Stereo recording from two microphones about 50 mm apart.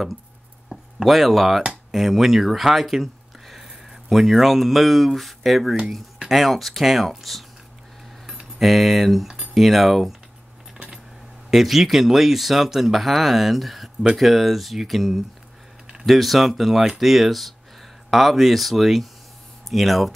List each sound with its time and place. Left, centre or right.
0.9 s speech: centre
1.6 s a sound: centre
2.0 s speech: centre
11.5 s speech: centre